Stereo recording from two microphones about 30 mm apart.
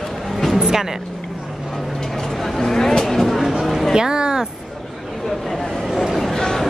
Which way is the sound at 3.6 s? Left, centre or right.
Centre.